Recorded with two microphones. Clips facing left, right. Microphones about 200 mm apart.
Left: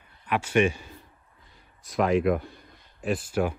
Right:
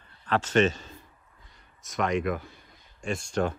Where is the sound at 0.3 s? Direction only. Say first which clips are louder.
Even; 10° left (ahead or behind).